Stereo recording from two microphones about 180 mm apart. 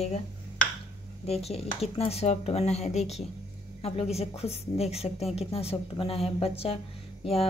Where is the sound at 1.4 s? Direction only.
35° left (ahead or behind).